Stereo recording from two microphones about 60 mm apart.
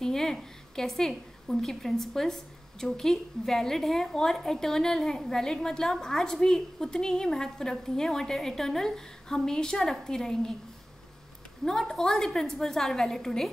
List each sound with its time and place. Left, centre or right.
0.0 s a woman's voice: centre
11.6 s a woman's voice: centre